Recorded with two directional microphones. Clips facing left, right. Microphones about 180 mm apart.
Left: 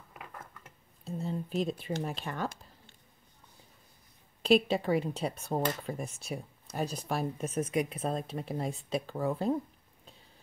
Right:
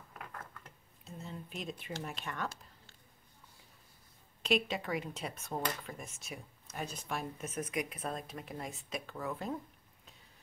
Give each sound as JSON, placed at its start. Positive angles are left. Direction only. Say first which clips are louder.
{"t": 0.1, "sound": "a sound", "louder": "left 1 dB", "side_deg": 5}
{"t": 1.0, "sound": "speech", "louder": "left 10 dB", "side_deg": 35}
{"t": 4.4, "sound": "speech", "louder": "left 8 dB", "side_deg": 35}